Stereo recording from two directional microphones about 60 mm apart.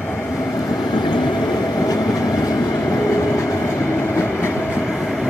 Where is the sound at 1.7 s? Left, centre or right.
Left.